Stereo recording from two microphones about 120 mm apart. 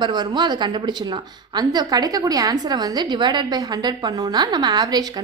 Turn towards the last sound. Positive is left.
turn(degrees=-35)  # may be behind; listen again after turning